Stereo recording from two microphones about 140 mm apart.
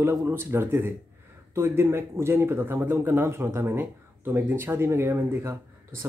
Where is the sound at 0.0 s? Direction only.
20° right (ahead or behind).